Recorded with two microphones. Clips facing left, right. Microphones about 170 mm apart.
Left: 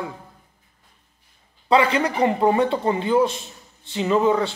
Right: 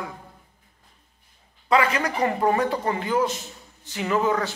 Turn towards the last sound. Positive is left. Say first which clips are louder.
# left 4 dB
turn(degrees=25)  # may be behind; listen again after turning